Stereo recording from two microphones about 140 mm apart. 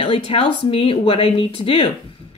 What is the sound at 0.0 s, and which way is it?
A woman's voice, 40° left (ahead or behind).